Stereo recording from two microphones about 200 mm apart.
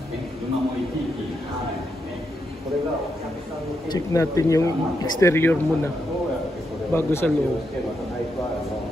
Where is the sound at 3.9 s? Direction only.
15° left (ahead or behind).